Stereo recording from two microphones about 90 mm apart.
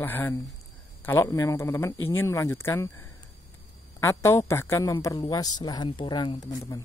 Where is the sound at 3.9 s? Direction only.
30° left (ahead or behind).